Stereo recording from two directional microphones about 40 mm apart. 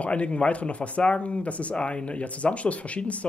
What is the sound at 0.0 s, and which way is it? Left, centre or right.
Speech, left.